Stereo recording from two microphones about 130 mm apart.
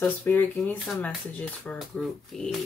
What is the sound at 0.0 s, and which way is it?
Speech, 15° left (ahead or behind).